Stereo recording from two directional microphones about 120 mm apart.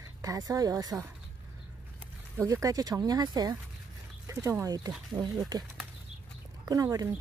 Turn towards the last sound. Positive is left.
turn(degrees=-30)  # may be behind; listen again after turning